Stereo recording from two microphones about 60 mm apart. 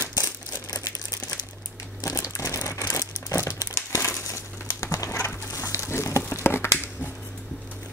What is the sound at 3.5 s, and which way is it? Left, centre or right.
Crumpling, left.